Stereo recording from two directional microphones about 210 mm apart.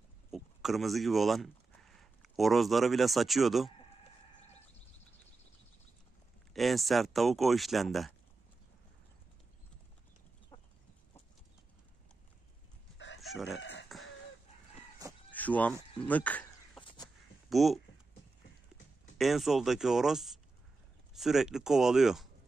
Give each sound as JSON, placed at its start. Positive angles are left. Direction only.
{"t": 0.3, "sound": "speech", "side_deg": 0}
{"t": 6.5, "sound": "speech", "side_deg": 0}
{"t": 12.9, "sound": "chicken", "side_deg": 60}
{"t": 13.2, "sound": "chicken", "side_deg": 0}
{"t": 13.6, "sound": "chicken", "side_deg": 60}
{"t": 15.0, "sound": "chicken", "side_deg": -15}
{"t": 15.3, "sound": "speech", "side_deg": 5}
{"t": 16.0, "sound": "a sound", "side_deg": 5}
{"t": 16.8, "sound": "a sound", "side_deg": 20}
{"t": 17.5, "sound": "speech", "side_deg": 0}
{"t": 19.1, "sound": "speech", "side_deg": 0}